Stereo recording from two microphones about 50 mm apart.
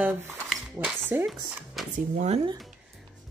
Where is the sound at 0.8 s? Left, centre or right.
Right.